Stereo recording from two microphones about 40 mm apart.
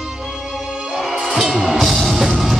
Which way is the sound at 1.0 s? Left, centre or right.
Centre.